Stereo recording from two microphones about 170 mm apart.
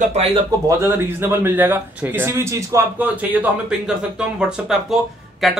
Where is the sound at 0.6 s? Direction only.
15° right (ahead or behind).